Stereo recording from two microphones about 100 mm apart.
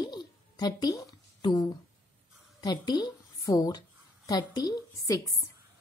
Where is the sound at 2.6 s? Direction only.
45° left (ahead or behind).